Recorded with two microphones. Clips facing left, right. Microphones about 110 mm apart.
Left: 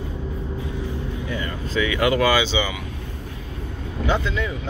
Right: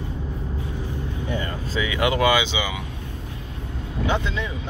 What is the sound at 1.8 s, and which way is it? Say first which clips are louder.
Speech: left 2 dB; 20° right (ahead or behind).